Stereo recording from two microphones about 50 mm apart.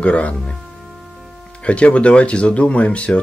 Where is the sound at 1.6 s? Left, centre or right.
Left.